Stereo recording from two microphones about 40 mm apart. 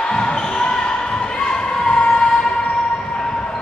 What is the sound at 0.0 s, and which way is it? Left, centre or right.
Basketball bounce, centre.